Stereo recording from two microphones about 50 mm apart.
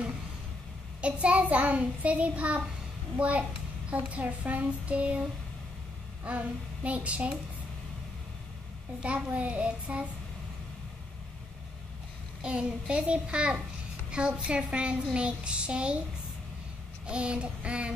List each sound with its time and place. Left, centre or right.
1.0 s a child's voice: right
6.2 s a child's voice: right
9.0 s a child's voice: right
12.4 s a child's voice: centre
17.0 s a child's voice: centre